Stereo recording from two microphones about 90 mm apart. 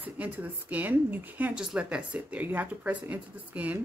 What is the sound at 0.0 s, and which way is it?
Speech, 15° right (ahead or behind).